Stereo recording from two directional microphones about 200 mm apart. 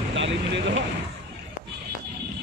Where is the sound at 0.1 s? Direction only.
65° right (ahead or behind).